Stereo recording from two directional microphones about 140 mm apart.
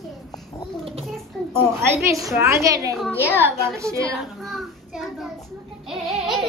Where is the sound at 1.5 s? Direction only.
20° right (ahead or behind).